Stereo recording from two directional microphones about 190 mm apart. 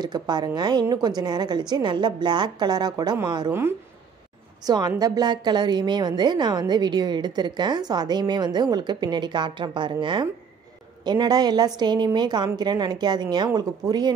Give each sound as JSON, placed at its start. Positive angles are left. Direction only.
{"t": 0.0, "sound": "a woman's voice", "side_deg": -20}